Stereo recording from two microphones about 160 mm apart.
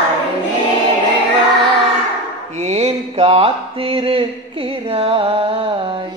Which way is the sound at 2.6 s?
45° right (ahead or behind).